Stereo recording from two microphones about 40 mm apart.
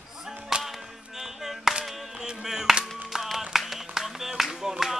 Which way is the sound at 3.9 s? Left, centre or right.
Centre.